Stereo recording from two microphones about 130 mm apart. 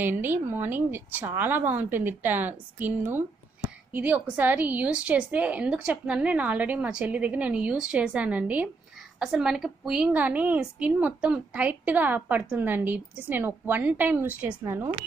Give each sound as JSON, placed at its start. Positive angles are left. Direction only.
{"t": 0.0, "sound": "a woman's voice", "side_deg": -15}